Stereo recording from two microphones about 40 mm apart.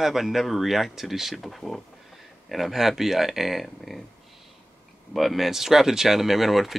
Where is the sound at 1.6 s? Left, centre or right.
Left.